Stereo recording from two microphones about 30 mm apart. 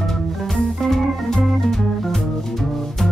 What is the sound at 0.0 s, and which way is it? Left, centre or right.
Organ, centre.